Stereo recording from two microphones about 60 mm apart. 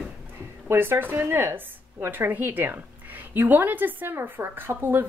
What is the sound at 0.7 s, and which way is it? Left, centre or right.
A woman's voice, right.